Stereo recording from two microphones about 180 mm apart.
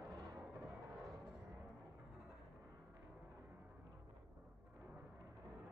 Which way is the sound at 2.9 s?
15° right (ahead or behind).